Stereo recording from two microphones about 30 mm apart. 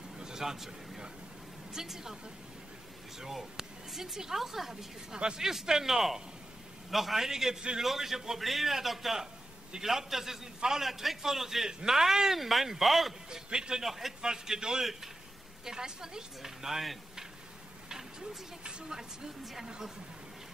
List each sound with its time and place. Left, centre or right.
0.2 s a sound: centre
1.7 s speech: centre
3.2 s speech: centre
5.1 s speech: right
5.4 s a man's voice: centre
12.4 s a man's voice: centre
13.3 s speech: right
13.8 s speech: centre
14.2 s speech: centre
17.8 s a sound: centre
18.6 s speech: right
18.9 s speech: centre